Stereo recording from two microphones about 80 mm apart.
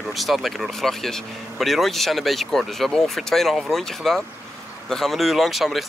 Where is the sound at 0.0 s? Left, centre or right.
Centre.